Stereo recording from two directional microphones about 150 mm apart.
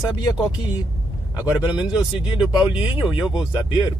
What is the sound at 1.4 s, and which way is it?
Speech, 30° left (ahead or behind).